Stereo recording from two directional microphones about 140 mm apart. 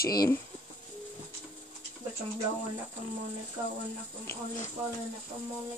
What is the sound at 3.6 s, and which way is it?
Speech, 25° right (ahead or behind).